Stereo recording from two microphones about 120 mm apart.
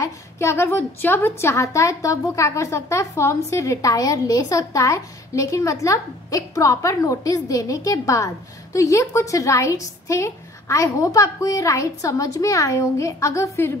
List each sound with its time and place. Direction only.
0.0 s a woman's voice: 20° left (ahead or behind)